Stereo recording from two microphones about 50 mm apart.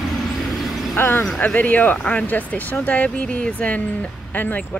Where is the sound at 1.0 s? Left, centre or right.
Left.